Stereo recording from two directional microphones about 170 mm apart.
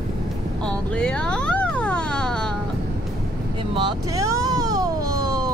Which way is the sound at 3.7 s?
25° right (ahead or behind).